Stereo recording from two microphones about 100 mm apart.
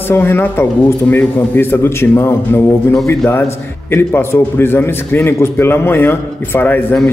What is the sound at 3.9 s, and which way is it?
Speech, 25° left (ahead or behind).